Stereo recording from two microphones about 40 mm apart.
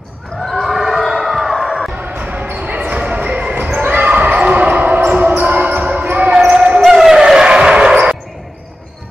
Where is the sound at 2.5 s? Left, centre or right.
Right.